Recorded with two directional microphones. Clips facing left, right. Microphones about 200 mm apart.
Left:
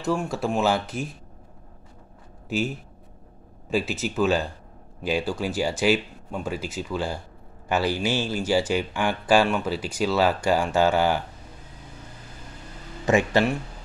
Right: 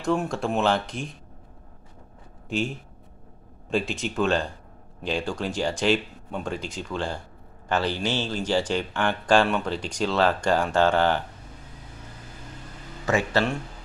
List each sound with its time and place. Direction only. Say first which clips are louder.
0.0 s speech: even; 5° left (ahead or behind)
2.5 s speech: left 1 dB; 5° left (ahead or behind)
13.0 s speech: left 3 dB; 15° left (ahead or behind)